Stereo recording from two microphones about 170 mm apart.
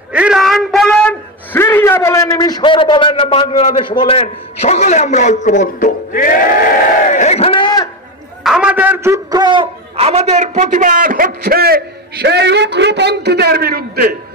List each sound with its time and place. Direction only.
0.1 s a sound: 5° right (ahead or behind); by 3.6 s 30° left (ahead or behind)
3.9 s a man's voice: 30° left (ahead or behind)
8.5 s a man's voice: 5° right (ahead or behind); by 14.1 s 60° right (ahead or behind)